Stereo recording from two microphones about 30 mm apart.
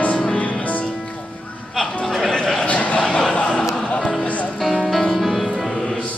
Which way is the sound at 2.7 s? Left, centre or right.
Left.